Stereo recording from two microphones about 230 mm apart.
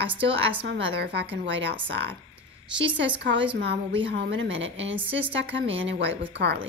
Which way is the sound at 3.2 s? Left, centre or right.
Right.